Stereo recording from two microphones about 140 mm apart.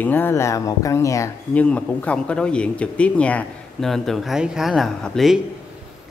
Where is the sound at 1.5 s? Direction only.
10° left (ahead or behind).